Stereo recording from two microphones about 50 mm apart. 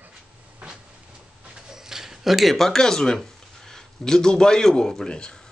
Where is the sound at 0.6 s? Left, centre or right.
Right.